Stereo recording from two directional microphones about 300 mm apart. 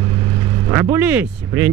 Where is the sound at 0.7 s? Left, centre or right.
Centre.